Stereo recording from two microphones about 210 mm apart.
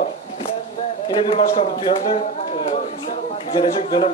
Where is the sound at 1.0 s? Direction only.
25° left (ahead or behind).